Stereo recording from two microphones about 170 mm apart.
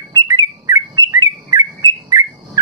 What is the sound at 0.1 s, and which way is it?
Bird, 20° right (ahead or behind).